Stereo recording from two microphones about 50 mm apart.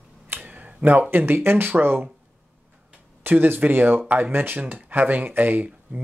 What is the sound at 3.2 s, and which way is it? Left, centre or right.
Speech, right.